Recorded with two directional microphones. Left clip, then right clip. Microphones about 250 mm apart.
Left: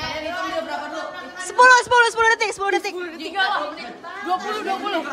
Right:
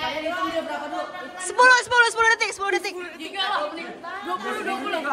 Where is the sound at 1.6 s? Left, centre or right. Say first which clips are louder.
Left 3 dB; centre.